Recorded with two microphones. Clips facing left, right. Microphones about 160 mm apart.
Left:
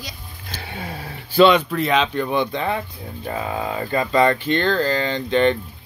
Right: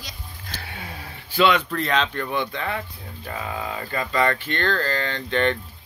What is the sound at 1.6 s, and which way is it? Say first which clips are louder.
Speech: left 4 dB; 10° left (ahead or behind).